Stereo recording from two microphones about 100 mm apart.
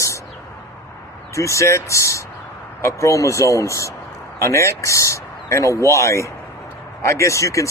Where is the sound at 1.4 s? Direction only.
30° left (ahead or behind).